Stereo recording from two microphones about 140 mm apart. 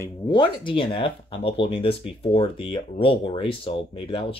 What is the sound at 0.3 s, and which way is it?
Speech, 35° left (ahead or behind).